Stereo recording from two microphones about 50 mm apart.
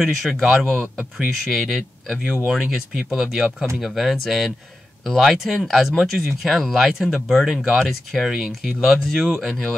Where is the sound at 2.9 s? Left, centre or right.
Centre.